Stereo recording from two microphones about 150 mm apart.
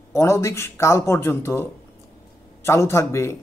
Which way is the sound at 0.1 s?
20° left (ahead or behind).